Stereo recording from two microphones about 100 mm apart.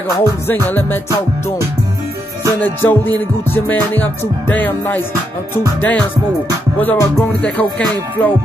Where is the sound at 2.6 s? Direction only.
20° left (ahead or behind).